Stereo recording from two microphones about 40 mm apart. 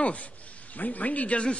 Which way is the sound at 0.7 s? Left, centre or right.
Left.